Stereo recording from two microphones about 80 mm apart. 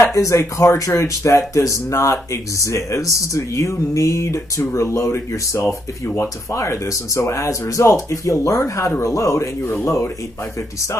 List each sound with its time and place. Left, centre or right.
0.0 s speech: left